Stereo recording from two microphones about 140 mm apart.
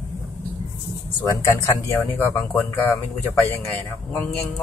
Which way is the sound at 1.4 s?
15° left (ahead or behind).